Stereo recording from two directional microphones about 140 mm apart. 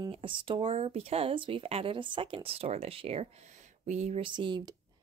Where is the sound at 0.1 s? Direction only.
35° right (ahead or behind); by 4.2 s 55° right (ahead or behind).